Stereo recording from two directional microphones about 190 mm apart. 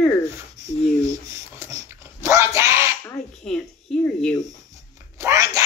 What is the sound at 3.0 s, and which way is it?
Speech, 5° left (ahead or behind).